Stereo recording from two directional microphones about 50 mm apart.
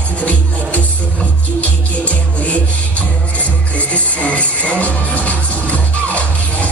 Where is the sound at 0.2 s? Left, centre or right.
Left.